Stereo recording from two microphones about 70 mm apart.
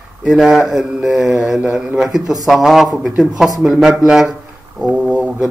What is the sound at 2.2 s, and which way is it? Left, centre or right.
Speech, right.